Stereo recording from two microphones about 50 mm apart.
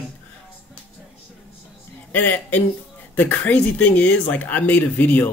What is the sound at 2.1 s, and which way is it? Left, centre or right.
Speech, left.